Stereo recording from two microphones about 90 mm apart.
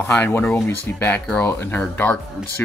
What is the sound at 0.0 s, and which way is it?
Speech, 20° left (ahead or behind).